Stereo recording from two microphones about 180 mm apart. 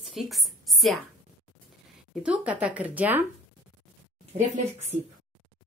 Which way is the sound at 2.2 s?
5° right (ahead or behind).